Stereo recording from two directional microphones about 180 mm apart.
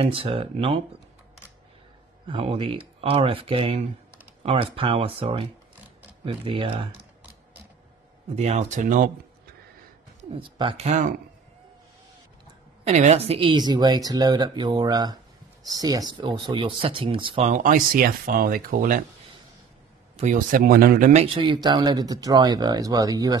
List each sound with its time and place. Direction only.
0.0 s speech: 30° right (ahead or behind)
2.2 s speech: 30° right (ahead or behind)
8.4 s speech: 40° right (ahead or behind)
10.3 s speech: 30° right (ahead or behind)
12.8 s speech: 40° right (ahead or behind)
17.5 s speech: 45° right (ahead or behind)
20.2 s speech: 45° right (ahead or behind)
21.1 s speech: 35° right (ahead or behind)
21.5 s speech: 25° right (ahead or behind)